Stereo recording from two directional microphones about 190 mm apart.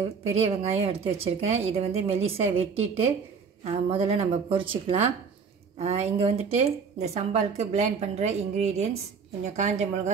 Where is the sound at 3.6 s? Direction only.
30° right (ahead or behind).